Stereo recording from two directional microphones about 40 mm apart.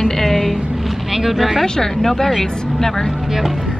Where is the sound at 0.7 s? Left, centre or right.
Centre.